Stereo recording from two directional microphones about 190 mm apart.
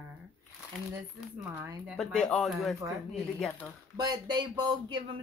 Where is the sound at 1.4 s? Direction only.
15° right (ahead or behind).